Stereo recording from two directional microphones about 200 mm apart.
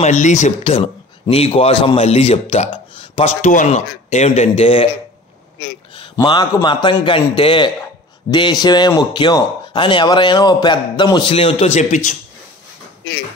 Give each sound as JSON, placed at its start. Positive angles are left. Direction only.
{"t": 0.0, "sound": "speech", "side_deg": 40}
{"t": 3.3, "sound": "speech", "side_deg": 40}
{"t": 6.1, "sound": "speech", "side_deg": 20}